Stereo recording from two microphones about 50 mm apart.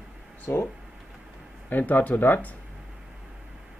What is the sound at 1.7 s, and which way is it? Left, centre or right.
Speech, left.